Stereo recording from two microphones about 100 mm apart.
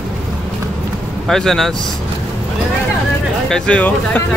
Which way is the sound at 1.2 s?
5° left (ahead or behind).